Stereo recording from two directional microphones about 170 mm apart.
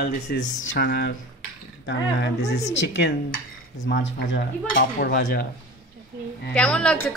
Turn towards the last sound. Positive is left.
turn(degrees=5)  # may be behind; listen again after turning